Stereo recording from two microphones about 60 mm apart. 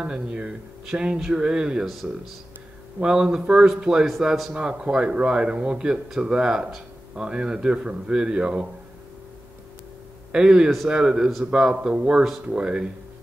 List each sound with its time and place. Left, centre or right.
0.0 s a man's voice: centre
3.0 s a man's voice: centre
10.3 s a man's voice: centre